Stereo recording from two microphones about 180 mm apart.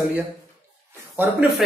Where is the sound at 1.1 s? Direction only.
10° right (ahead or behind).